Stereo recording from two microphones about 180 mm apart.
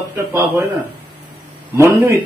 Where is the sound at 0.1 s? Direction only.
15° right (ahead or behind).